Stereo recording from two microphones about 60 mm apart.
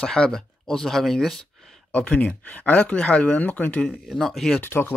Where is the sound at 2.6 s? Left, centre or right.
Left.